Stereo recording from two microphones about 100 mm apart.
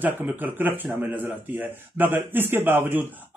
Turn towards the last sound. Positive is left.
turn(degrees=-20)  # may be behind; listen again after turning